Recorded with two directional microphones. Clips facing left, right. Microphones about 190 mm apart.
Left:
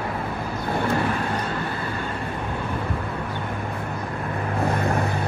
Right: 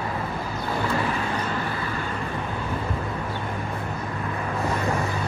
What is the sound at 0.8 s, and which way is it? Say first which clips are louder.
Vehicle: left 2 dB; 55° left (ahead or behind).